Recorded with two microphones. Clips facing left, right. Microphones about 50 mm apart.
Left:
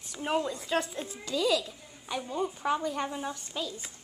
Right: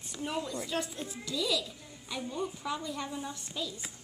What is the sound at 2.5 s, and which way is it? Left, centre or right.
A woman's voice, left.